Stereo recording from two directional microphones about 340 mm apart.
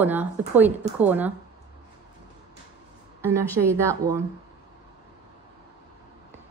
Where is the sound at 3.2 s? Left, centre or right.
Centre.